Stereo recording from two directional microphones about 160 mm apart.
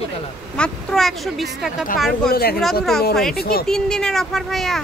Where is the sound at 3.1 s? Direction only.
Centre (ahead or behind).